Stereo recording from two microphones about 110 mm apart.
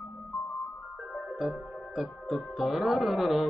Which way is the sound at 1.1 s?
Centre (ahead or behind).